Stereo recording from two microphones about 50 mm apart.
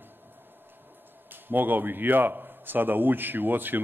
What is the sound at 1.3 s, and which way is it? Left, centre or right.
A man's voice, right.